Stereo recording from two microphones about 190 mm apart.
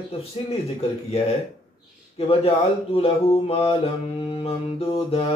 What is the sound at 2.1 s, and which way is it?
Speech, 30° left (ahead or behind).